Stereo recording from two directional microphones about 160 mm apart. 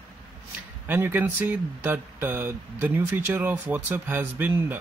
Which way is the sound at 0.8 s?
10° right (ahead or behind).